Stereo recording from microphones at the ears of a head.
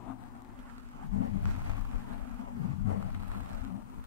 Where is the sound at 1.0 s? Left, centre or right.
Left.